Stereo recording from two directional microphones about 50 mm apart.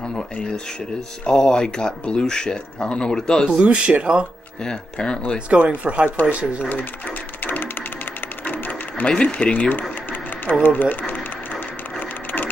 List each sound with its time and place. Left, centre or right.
1.2 s speech: centre
3.6 s speech: right
4.6 s speech: centre
5.5 s speech: right
6.4 s speech: centre
7.4 s a sound: left
9.0 s speech: centre
9.5 s speech: left